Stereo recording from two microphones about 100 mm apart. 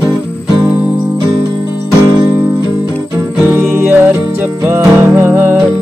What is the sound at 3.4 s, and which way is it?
Music, 20° right (ahead or behind).